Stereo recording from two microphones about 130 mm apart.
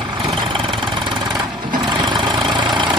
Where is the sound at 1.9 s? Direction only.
35° right (ahead or behind).